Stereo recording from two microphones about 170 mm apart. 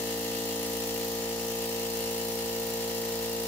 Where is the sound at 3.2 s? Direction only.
15° left (ahead or behind).